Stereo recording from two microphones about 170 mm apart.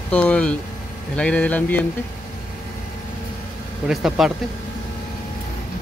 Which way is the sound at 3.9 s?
Centre (ahead or behind).